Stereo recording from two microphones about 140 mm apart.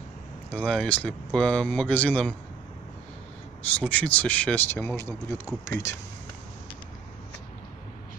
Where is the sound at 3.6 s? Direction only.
10° left (ahead or behind).